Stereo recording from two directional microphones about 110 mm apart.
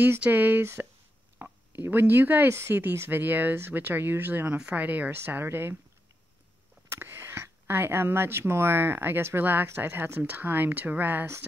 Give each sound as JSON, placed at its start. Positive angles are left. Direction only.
{"t": 0.0, "sound": "speech", "side_deg": -15}
{"t": 1.4, "sound": "a sound", "side_deg": -25}
{"t": 1.8, "sound": "speech", "side_deg": -20}
{"t": 6.9, "sound": "speech", "side_deg": -20}